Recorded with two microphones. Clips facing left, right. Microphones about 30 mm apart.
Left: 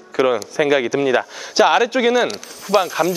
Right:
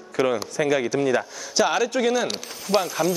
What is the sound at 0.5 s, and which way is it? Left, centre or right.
Speech, left.